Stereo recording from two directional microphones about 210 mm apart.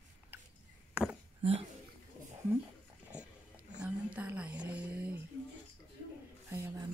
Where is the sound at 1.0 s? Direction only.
5° right (ahead or behind).